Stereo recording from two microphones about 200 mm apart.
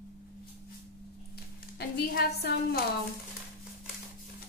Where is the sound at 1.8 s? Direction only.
55° left (ahead or behind).